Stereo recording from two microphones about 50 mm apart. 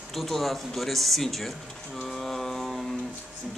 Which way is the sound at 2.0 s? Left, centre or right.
Centre.